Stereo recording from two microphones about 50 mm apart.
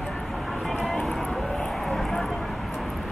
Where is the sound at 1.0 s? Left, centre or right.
Centre.